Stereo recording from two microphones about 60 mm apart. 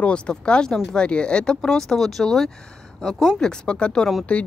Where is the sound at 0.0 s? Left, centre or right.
Centre.